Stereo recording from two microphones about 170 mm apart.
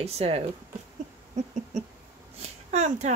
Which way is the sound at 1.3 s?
45° right (ahead or behind).